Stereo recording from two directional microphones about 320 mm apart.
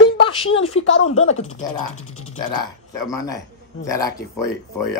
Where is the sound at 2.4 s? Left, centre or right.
Centre.